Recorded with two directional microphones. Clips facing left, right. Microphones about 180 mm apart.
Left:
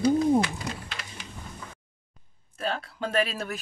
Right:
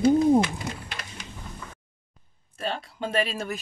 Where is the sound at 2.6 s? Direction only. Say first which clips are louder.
Even; centre (ahead or behind).